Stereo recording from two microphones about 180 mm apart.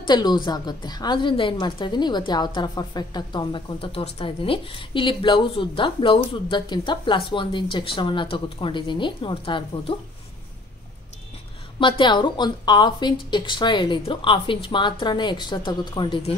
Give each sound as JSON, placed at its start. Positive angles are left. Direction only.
{"t": 0.0, "sound": "a woman's voice", "side_deg": 25}
{"t": 11.8, "sound": "a woman's voice", "side_deg": 25}